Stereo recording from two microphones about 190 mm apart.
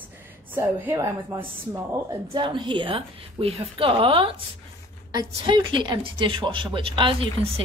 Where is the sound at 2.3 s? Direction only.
25° right (ahead or behind).